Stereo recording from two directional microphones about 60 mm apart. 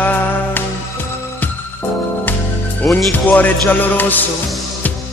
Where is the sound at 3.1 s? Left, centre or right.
Left.